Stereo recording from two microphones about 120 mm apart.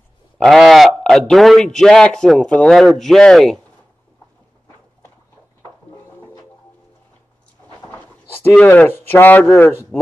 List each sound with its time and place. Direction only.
0.4 s a man's voice: centre (ahead or behind)
7.9 s speech: 15° left (ahead or behind)